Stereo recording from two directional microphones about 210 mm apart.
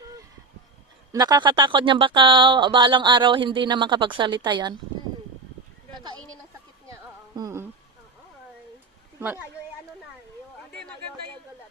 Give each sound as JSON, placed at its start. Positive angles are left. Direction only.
{"t": 1.1, "sound": "speech", "side_deg": -20}
{"t": 6.9, "sound": "music", "side_deg": -15}